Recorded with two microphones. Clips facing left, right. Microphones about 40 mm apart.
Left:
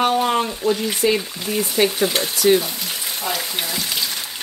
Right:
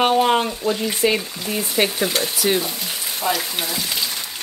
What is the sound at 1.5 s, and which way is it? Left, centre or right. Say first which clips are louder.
Speech: left 2 dB; centre.